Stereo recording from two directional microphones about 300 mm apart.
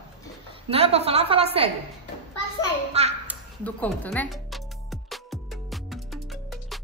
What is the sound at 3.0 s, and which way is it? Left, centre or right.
Speech, right.